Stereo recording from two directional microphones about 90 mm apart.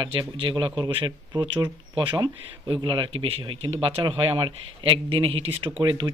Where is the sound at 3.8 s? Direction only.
70° right (ahead or behind).